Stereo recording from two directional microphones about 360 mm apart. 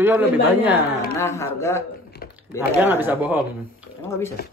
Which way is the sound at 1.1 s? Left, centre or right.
Centre.